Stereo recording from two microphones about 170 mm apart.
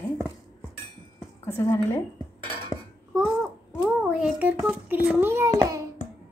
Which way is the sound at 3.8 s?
5° right (ahead or behind).